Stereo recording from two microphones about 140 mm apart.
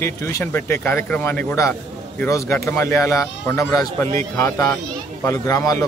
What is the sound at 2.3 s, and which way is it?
A man's voice, 20° left (ahead or behind).